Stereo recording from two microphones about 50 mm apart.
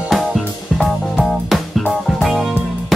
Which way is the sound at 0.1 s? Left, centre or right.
Centre.